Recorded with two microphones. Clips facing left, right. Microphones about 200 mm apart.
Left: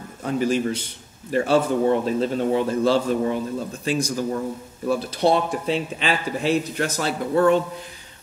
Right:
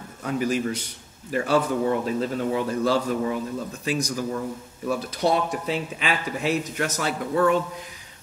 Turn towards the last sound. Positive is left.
turn(degrees=30)  # may be behind; listen again after turning